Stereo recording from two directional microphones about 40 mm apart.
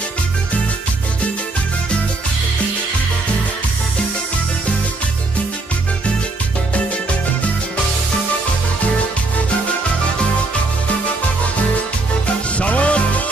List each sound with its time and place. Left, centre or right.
12.5 s music: left